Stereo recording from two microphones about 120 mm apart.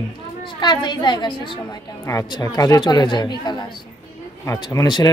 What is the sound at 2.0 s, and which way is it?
Speech, 30° left (ahead or behind).